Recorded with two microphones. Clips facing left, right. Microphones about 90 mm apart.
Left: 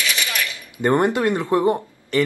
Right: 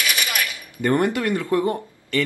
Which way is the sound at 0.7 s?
20° left (ahead or behind).